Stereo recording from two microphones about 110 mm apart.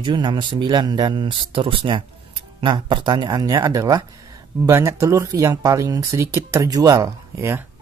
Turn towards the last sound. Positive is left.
turn(degrees=-30)  # may be behind; listen again after turning